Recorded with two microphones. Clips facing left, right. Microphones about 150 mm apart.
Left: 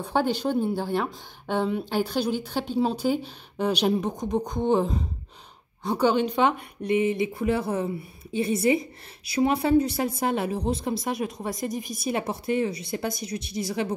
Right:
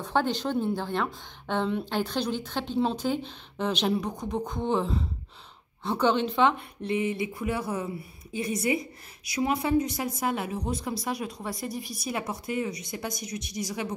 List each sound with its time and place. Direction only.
0.1 s a woman's voice: 10° left (ahead or behind); by 13.7 s 30° left (ahead or behind)